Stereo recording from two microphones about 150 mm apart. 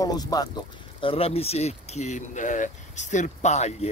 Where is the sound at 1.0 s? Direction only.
40° left (ahead or behind).